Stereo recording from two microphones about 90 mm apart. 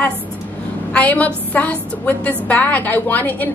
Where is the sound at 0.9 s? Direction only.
15° left (ahead or behind).